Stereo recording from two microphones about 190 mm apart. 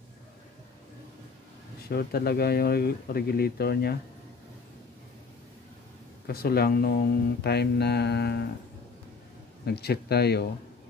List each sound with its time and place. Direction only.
1.9 s speech: 55° left (ahead or behind)
6.2 s speech: 55° left (ahead or behind)
9.7 s speech: 55° left (ahead or behind)